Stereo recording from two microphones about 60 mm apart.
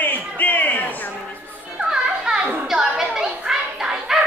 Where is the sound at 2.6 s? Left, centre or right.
Centre.